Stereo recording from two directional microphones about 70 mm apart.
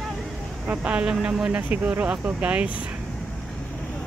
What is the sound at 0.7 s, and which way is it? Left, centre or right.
Speech, centre.